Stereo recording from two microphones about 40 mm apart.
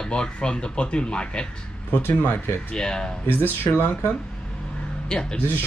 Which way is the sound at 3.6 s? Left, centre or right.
Left.